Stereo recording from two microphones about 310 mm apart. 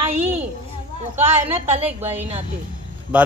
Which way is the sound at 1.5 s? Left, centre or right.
Centre.